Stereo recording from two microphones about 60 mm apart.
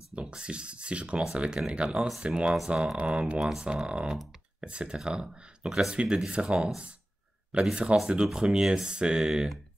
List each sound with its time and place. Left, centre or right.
0.1 s speech: centre
3.3 s speech: centre
3.6 s speech: centre